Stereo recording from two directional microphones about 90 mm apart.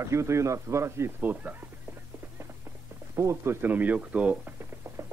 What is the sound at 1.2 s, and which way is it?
Speech, 20° right (ahead or behind).